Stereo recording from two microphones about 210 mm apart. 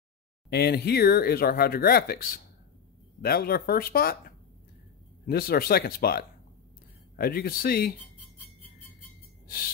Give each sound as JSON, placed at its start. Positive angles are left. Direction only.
{"t": 0.5, "sound": "speech", "side_deg": 50}
{"t": 5.2, "sound": "speech", "side_deg": 45}